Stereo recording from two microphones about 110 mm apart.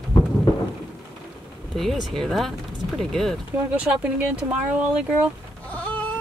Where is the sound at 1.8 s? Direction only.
Centre (ahead or behind).